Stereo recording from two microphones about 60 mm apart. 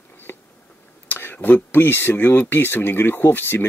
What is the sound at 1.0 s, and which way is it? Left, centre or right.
Speech, left.